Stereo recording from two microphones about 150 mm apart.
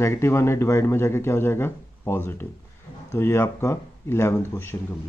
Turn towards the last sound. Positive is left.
turn(degrees=15)  # may be behind; listen again after turning